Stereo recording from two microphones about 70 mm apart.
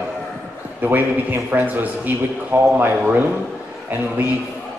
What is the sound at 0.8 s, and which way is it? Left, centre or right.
Music, right.